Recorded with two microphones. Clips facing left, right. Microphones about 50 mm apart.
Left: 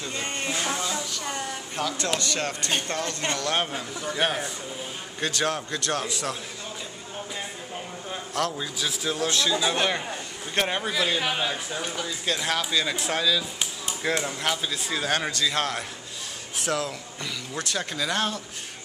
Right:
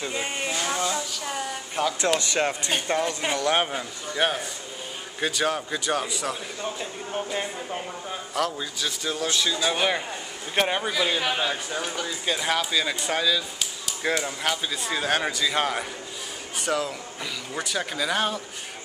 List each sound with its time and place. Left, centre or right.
0.0 s a sound: centre
0.6 s child singing: centre
1.8 s speech: centre
4.0 s a man's voice: centre
8.4 s a man's voice: centre